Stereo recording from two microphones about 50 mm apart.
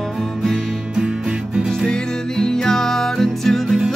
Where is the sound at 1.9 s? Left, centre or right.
Centre.